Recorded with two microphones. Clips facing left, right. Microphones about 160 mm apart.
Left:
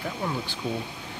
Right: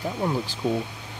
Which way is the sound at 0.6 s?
35° right (ahead or behind).